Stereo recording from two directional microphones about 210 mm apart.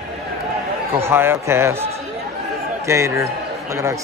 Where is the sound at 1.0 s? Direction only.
10° right (ahead or behind).